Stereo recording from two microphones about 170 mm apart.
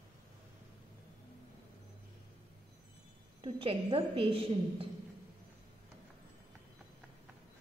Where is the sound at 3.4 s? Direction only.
30° right (ahead or behind).